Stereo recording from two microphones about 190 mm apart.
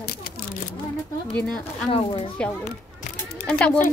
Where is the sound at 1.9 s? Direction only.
30° left (ahead or behind).